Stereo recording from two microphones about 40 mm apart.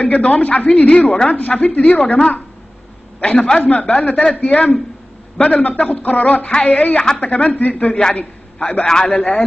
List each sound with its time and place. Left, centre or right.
0.0 s a man's voice: left
7.9 s a man's voice: left